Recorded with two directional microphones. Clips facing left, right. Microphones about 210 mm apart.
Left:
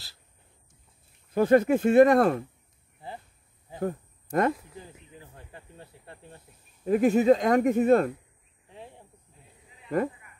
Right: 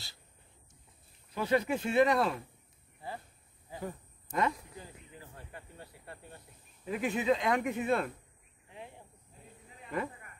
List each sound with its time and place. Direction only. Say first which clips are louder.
1.3 s speech: left 10 dB; 50° left (ahead or behind)
3.8 s speech: left 11 dB; 55° left (ahead or behind)
5.5 s speech: left 2 dB; 25° left (ahead or behind)
6.8 s speech: left 12 dB; 45° left (ahead or behind)